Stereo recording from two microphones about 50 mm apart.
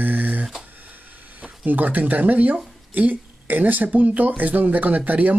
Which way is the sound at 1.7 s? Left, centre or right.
Right.